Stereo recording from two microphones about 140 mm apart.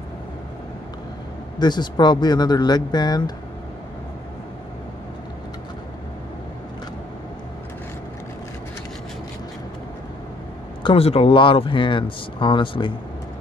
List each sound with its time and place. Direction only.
1.6 s speech: 30° left (ahead or behind)
10.8 s speech: 40° left (ahead or behind)